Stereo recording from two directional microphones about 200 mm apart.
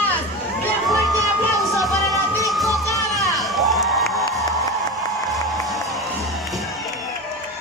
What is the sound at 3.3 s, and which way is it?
Crowd, centre (ahead or behind).